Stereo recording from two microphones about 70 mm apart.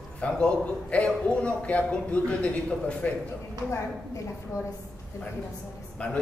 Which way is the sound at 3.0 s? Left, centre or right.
Left.